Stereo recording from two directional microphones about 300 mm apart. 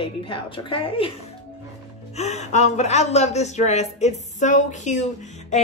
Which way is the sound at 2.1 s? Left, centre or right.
Left.